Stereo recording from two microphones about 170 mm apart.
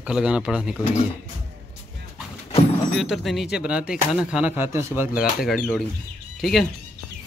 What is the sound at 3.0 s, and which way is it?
Speech, centre (ahead or behind).